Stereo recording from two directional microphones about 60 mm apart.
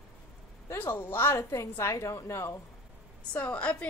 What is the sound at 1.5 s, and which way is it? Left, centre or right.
A woman's voice, left.